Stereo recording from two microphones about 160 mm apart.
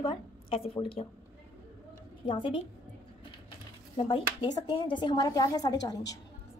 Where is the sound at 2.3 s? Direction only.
35° left (ahead or behind).